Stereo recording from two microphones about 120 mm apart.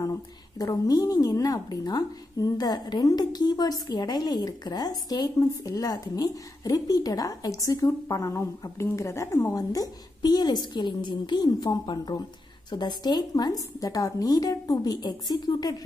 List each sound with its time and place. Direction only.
0.0 s a woman's voice: 30° left (ahead or behind)